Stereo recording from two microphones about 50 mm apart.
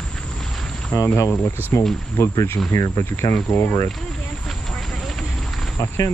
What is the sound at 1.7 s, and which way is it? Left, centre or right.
Speech, left.